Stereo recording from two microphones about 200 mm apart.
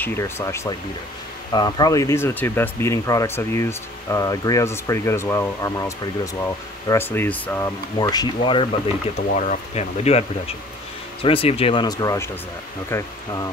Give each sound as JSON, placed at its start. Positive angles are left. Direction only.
{"t": 0.0, "sound": "speech", "side_deg": 15}
{"t": 9.4, "sound": "speech", "side_deg": 35}